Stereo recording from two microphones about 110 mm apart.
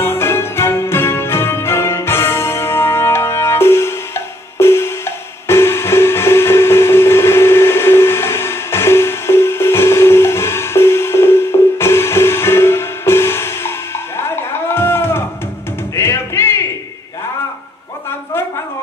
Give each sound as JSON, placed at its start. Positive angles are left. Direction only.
{"t": 0.0, "sound": "music", "side_deg": 20}